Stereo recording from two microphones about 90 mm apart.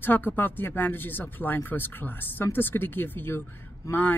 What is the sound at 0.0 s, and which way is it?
Speech, 20° left (ahead or behind).